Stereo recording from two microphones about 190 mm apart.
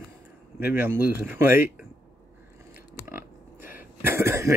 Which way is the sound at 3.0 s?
10° right (ahead or behind).